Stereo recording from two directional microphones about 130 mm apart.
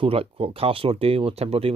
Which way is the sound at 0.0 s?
45° right (ahead or behind).